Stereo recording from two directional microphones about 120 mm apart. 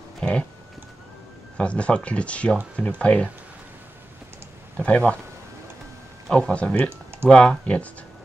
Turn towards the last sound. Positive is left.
turn(degrees=10)  # may be behind; listen again after turning